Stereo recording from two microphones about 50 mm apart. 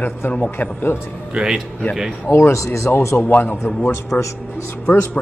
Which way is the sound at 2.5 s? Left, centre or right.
Left.